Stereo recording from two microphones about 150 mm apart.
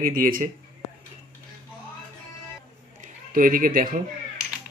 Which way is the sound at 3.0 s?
65° right (ahead or behind).